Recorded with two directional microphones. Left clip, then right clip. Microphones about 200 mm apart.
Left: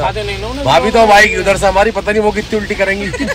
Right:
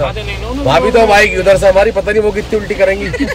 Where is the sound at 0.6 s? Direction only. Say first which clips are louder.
Even; 15° right (ahead or behind).